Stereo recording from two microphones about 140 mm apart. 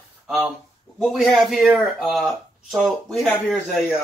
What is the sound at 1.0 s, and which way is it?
Speech, centre (ahead or behind).